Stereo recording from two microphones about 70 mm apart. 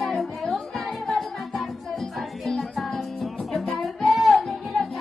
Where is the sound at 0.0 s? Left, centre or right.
Centre.